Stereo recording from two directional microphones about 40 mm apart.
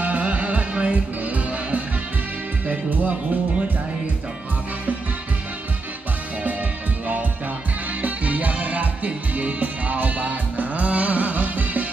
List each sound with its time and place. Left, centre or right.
0.0 s music: right
8.0 s music: right